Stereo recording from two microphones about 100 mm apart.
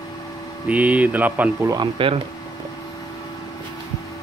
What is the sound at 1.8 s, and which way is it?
Speech, 60° right (ahead or behind).